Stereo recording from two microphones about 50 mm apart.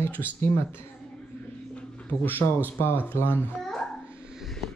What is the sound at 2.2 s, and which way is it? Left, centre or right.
Speech, left.